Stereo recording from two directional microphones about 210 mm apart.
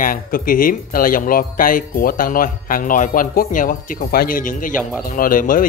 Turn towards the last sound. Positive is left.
turn(degrees=40)  # may be behind; listen again after turning